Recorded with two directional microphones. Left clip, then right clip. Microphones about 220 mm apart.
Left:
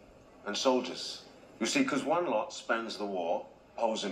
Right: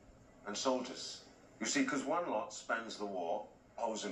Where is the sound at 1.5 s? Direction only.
55° left (ahead or behind).